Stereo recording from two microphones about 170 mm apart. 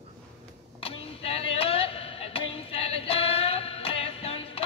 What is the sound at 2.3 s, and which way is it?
Music, 35° left (ahead or behind).